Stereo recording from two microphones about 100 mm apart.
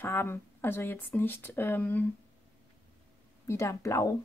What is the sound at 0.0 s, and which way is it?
Speech, 25° left (ahead or behind).